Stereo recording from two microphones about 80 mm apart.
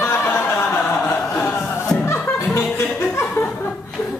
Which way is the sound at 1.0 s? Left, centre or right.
Centre.